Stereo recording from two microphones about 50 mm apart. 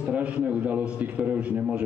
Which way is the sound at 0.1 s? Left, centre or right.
Right.